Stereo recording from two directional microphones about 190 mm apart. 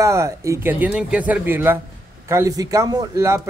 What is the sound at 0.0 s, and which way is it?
Speech, 15° right (ahead or behind).